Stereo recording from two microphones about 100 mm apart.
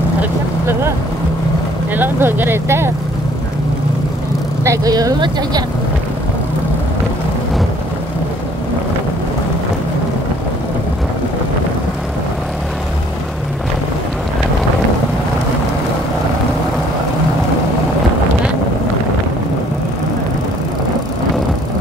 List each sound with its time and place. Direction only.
0.2 s vehicle: 20° right (ahead or behind)
2.0 s speech: 20° right (ahead or behind)
4.6 s speech: 35° right (ahead or behind)